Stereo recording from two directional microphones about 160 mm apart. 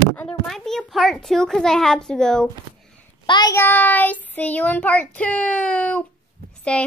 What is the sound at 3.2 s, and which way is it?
Speech, 25° left (ahead or behind).